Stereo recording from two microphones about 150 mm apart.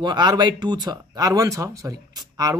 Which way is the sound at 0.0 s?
30° right (ahead or behind).